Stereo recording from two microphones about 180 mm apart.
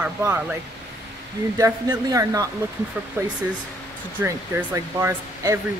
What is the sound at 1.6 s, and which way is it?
Speech, 20° right (ahead or behind).